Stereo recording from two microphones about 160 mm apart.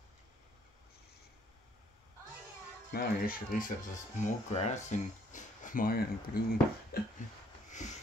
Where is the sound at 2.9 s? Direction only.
60° left (ahead or behind).